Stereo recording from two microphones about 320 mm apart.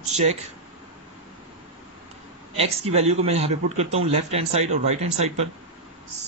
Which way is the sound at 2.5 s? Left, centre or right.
Centre.